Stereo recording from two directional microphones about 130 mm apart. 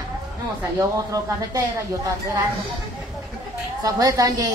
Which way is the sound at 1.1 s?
30° right (ahead or behind).